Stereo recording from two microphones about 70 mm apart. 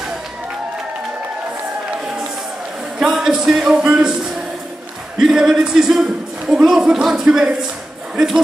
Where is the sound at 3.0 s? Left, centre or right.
Centre.